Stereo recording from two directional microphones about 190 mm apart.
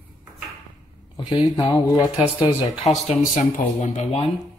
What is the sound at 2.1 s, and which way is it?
Speech, 5° right (ahead or behind).